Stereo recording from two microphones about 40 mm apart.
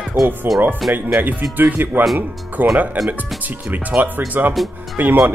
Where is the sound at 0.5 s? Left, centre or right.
Centre.